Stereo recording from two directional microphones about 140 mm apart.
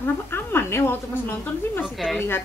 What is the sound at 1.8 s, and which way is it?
Speech, centre (ahead or behind).